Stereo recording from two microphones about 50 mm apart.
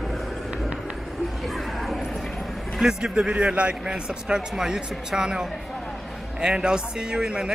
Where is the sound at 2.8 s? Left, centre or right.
Centre.